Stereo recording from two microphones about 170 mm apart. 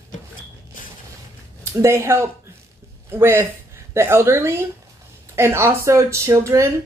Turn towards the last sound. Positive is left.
turn(degrees=-15)  # may be behind; listen again after turning